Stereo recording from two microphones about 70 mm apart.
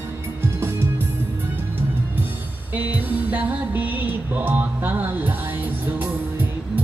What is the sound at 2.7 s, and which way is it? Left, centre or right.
Music, right.